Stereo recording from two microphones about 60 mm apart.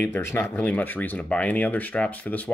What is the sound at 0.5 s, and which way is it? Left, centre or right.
Speech, left.